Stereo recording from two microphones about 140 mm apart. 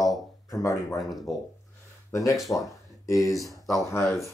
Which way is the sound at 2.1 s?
25° left (ahead or behind).